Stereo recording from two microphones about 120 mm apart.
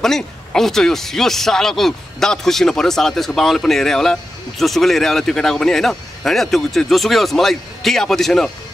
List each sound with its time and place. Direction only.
0.0 s speech: 5° left (ahead or behind)